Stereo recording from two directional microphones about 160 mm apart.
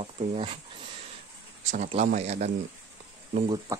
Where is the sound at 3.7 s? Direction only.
20° right (ahead or behind).